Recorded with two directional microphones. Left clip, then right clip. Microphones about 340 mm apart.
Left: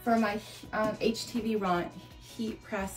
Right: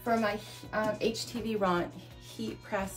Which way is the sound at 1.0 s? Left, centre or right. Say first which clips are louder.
Left 1 dB; centre.